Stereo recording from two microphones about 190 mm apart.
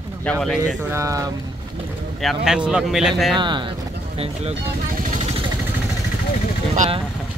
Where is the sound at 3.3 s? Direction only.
25° right (ahead or behind).